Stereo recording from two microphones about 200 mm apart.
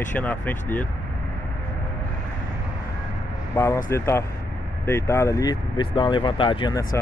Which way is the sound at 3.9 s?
15° left (ahead or behind).